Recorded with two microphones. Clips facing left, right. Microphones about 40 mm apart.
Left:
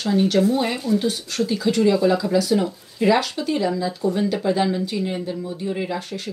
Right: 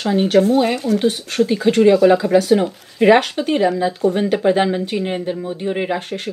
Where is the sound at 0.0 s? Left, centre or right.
Right.